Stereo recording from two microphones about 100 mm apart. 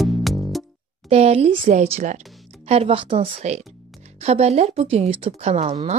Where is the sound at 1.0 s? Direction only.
90° right; by 3.6 s 60° right (ahead or behind).